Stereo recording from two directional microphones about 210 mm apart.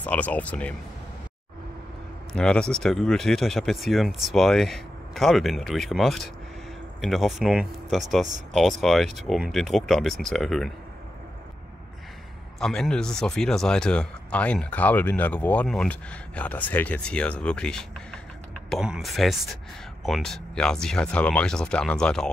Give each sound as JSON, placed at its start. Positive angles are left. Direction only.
{"t": 0.0, "sound": "speech", "side_deg": 5}
{"t": 2.3, "sound": "speech", "side_deg": 5}
{"t": 12.5, "sound": "speech", "side_deg": 0}